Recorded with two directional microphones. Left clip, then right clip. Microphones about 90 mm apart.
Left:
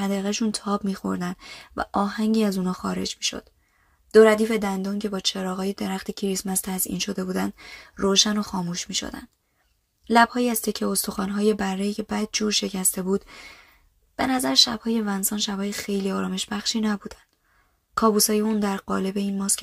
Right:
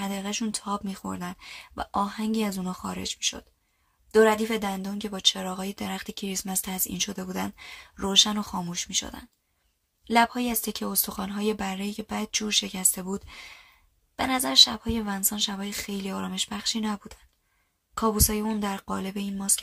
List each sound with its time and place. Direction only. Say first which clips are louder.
0.0 s speech: left 5 dB; 35° left (ahead or behind)